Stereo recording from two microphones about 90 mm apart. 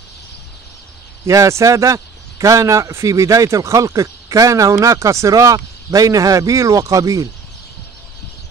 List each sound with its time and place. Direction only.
1.2 s a man's voice: 35° right (ahead or behind)